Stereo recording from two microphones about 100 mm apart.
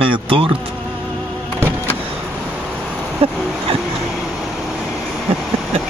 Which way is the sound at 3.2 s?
75° right (ahead or behind).